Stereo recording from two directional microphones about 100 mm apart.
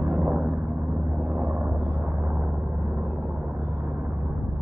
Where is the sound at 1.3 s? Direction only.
20° right (ahead or behind).